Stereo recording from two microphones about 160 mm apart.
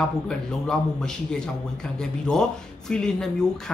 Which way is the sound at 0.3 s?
5° left (ahead or behind).